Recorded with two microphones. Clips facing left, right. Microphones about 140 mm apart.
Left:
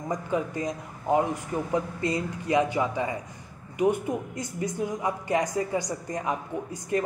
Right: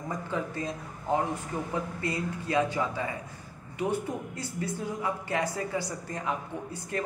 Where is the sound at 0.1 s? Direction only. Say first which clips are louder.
Left 5 dB; 15° left (ahead or behind).